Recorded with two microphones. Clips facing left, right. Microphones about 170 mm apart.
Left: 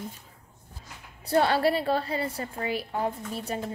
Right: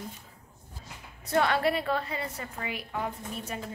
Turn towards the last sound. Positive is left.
turn(degrees=35)  # may be behind; listen again after turning